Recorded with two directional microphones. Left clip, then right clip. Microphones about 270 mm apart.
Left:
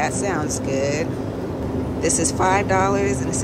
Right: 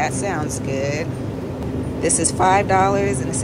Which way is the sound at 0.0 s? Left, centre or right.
Centre.